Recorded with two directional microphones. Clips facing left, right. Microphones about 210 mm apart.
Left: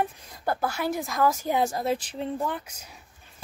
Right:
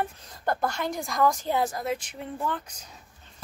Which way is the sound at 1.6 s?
25° left (ahead or behind).